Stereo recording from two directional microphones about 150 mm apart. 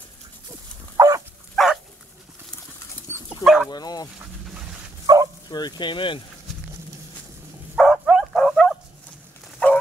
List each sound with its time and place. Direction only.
0.9 s dog: 20° right (ahead or behind)
1.5 s dog: centre (ahead or behind)
3.1 s dog: 15° left (ahead or behind)
3.4 s bow-wow: centre (ahead or behind)
3.7 s speech: 25° left (ahead or behind)
5.0 s bow-wow: 25° right (ahead or behind)
5.5 s sizzle: 30° left (ahead or behind)
7.7 s bow-wow: centre (ahead or behind)